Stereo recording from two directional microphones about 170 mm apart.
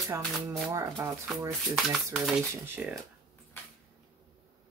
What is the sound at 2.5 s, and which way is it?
Speech, 10° right (ahead or behind).